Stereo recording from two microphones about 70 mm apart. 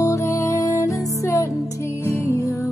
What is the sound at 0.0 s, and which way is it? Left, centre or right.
Music, left.